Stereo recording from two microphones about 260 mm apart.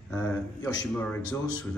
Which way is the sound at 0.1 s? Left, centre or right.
Centre.